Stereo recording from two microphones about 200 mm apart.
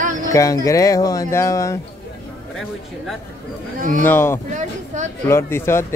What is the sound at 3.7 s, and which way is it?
Speech, 40° right (ahead or behind).